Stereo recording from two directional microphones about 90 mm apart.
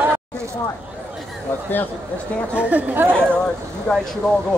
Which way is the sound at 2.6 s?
15° right (ahead or behind).